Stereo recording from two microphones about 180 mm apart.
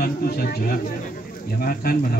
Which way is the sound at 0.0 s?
55° left (ahead or behind).